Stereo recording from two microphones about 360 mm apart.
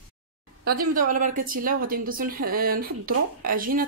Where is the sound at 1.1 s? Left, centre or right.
Right.